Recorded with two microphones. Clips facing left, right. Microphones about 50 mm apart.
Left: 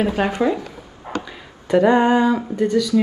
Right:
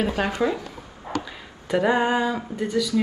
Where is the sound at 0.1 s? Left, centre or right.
Left.